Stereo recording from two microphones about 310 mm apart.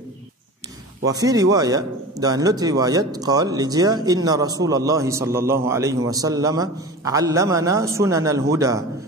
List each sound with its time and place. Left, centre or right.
1.0 s speech: centre